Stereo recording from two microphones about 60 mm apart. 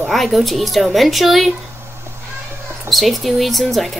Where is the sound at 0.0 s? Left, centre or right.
Centre.